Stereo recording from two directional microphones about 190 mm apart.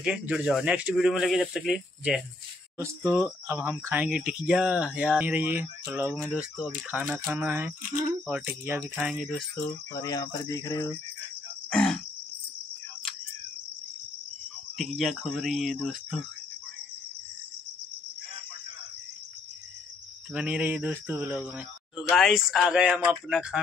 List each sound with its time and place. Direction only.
0.0 s speech: 5° right (ahead or behind)
9.7 s cricket: 15° left (ahead or behind)
11.7 s speech: 5° left (ahead or behind)
14.8 s speech: centre (ahead or behind)
20.3 s speech: 5° right (ahead or behind)